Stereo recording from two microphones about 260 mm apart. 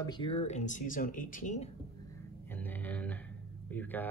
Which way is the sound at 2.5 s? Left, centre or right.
Centre.